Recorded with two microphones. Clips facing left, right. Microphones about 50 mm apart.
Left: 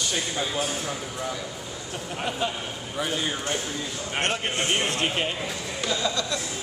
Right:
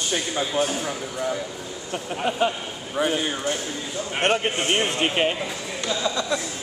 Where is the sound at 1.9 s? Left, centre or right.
Centre.